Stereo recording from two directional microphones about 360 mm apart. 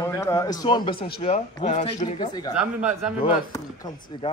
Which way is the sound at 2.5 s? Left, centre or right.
Centre.